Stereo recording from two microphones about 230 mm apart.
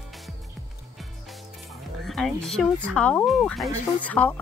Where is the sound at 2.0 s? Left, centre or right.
Centre.